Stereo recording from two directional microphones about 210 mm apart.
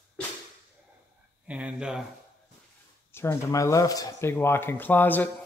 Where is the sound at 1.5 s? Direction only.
5° right (ahead or behind).